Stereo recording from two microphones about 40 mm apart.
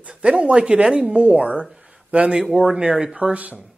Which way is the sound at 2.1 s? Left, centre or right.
Right.